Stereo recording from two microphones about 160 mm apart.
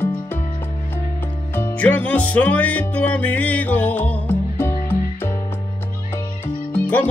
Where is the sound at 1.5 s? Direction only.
10° left (ahead or behind).